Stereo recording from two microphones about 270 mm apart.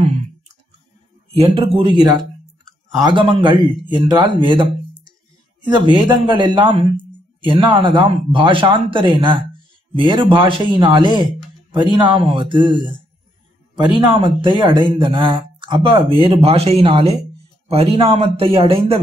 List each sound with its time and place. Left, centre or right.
1.4 s speech: centre